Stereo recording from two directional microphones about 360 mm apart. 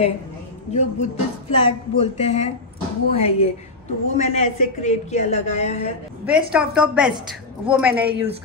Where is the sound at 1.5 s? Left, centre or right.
Centre.